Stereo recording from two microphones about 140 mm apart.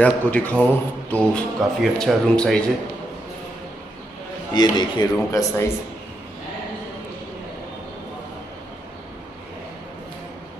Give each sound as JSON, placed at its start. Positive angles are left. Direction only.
{"t": 0.0, "sound": "a man's voice", "side_deg": 10}
{"t": 4.6, "sound": "speech", "side_deg": 30}